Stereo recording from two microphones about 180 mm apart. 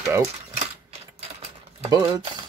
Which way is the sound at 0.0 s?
15° right (ahead or behind).